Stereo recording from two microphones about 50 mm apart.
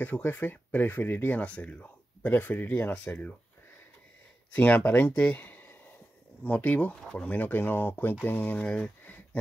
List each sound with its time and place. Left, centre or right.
0.0 s speech: left
1.4 s speech: left
2.3 s speech: left
4.6 s speech: left
8.5 s a sound: left